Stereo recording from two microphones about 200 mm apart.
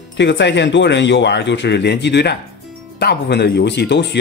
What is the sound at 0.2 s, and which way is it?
Speech, 60° left (ahead or behind).